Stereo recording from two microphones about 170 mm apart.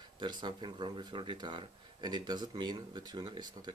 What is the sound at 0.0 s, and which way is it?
Speech, 25° right (ahead or behind).